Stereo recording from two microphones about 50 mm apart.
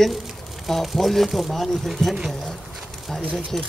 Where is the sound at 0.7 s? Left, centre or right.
Centre.